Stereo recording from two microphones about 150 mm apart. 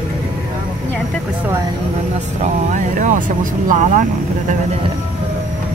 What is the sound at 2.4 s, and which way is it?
Speech, 55° right (ahead or behind).